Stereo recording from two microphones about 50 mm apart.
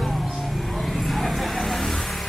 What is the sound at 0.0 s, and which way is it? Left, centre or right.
Vehicle, centre.